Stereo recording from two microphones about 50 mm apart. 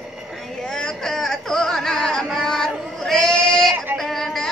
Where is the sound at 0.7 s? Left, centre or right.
Centre.